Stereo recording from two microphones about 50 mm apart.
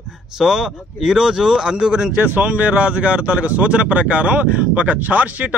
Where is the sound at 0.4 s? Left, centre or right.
Centre.